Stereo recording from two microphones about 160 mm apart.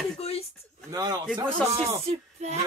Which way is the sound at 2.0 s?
45° right (ahead or behind).